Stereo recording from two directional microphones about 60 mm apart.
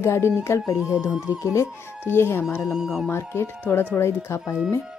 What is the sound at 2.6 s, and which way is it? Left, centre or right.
Speech, centre.